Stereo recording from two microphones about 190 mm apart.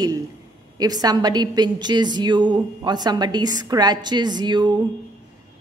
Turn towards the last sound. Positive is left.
turn(degrees=-25)  # may be behind; listen again after turning